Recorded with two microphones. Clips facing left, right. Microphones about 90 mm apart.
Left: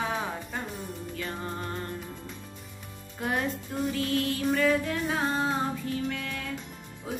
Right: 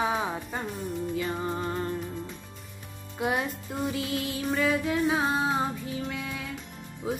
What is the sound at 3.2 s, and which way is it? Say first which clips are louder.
Music: right 1 dB; 10° right (ahead or behind).